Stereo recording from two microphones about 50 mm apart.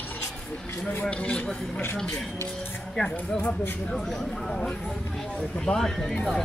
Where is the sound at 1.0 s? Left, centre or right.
Left.